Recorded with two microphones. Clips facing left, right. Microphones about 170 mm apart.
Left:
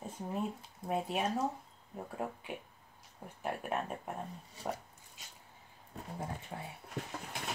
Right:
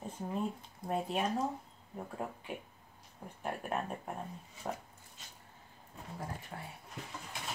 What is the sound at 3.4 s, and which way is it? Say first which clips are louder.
Speech: even; centre (ahead or behind).